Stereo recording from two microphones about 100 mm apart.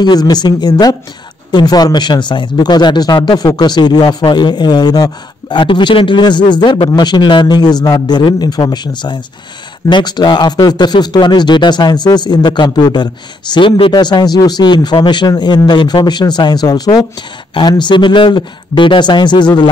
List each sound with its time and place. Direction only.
0.0 s speech: 45° left (ahead or behind); by 13.9 s 60° left (ahead or behind)
13.9 s speech: 45° left (ahead or behind)